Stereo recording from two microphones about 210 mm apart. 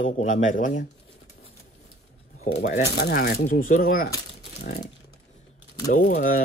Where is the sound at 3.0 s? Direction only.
50° left (ahead or behind).